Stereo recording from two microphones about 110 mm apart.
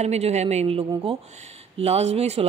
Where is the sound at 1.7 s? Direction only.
75° right (ahead or behind).